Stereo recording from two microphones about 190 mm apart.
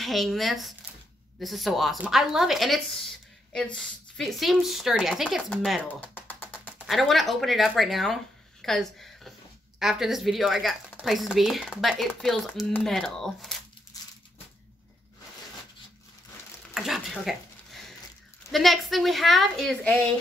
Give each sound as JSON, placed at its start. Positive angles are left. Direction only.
{"t": 0.0, "sound": "speech", "side_deg": 0}
{"t": 8.6, "sound": "a sound", "side_deg": 0}
{"t": 9.8, "sound": "speech", "side_deg": 0}
{"t": 13.9, "sound": "crumpling", "side_deg": 20}
{"t": 16.7, "sound": "a sound", "side_deg": 0}
{"t": 18.5, "sound": "speech", "side_deg": 0}